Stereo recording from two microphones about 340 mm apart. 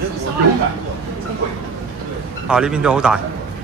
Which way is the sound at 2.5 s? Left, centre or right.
Centre.